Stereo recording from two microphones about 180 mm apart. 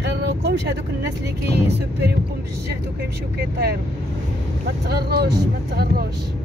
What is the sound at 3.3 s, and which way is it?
Speech, 65° right (ahead or behind).